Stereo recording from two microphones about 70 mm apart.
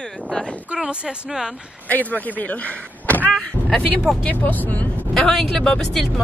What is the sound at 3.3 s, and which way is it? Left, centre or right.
Speech, centre.